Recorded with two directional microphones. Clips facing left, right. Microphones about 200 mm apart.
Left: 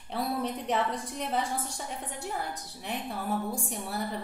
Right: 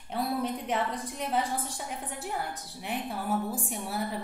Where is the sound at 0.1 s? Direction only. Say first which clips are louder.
Right 1 dB; centre (ahead or behind).